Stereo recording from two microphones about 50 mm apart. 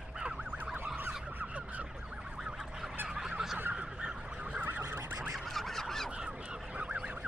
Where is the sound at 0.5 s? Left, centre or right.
Right.